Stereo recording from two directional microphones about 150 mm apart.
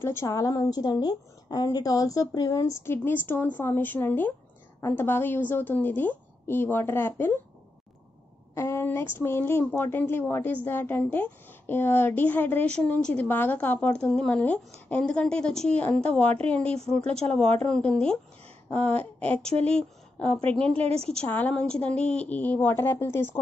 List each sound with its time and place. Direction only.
0.0 s a woman's voice: 15° left (ahead or behind)
8.5 s a woman's voice: 20° left (ahead or behind)